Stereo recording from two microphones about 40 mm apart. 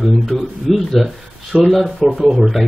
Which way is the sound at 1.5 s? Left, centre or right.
Right.